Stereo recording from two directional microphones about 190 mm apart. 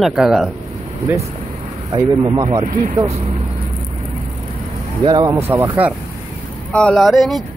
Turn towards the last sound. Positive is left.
turn(degrees=0)  # may be behind; listen again after turning